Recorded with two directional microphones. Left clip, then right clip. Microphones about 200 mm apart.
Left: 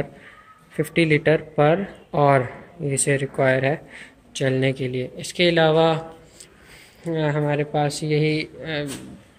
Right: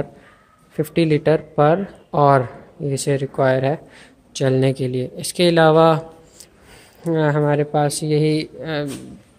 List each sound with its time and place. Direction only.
0.9 s speech: 20° right (ahead or behind)
4.5 s speech: 25° right (ahead or behind)
7.1 s speech: 30° right (ahead or behind)